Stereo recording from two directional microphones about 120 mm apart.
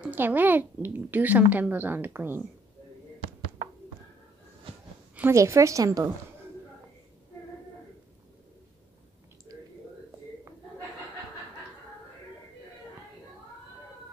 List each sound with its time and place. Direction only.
0.0 s a woman's voice: 15° right (ahead or behind)
5.3 s a woman's voice: 25° right (ahead or behind)